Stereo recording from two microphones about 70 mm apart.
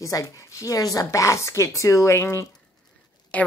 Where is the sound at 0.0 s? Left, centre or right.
Left.